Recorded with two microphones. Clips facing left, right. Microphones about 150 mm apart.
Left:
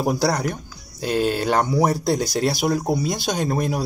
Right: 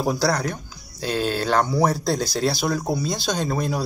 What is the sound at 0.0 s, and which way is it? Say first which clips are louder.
Speech: left 1 dB; 15° left (ahead or behind).